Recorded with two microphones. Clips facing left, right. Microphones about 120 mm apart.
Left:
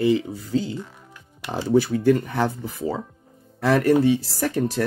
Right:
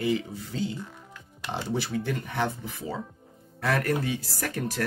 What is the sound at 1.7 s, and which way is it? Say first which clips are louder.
Speech: left 13 dB; 45° left (ahead or behind).